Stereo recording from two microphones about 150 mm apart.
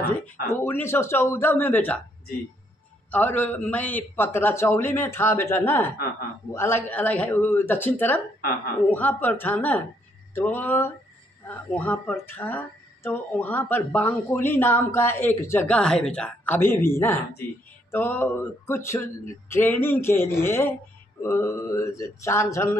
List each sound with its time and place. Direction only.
0.6 s speech: 15° left (ahead or behind)
3.1 s speech: 10° left (ahead or behind)